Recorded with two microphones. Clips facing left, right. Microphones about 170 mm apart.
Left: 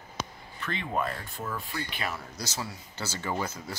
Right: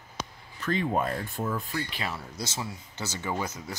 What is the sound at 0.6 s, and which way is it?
Speech, 40° right (ahead or behind).